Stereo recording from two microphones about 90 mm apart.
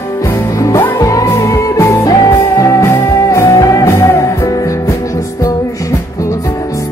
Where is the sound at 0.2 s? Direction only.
35° left (ahead or behind).